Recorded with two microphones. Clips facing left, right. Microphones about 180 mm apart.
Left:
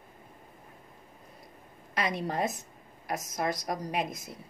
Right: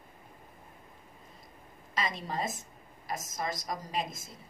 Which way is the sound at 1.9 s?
65° left (ahead or behind).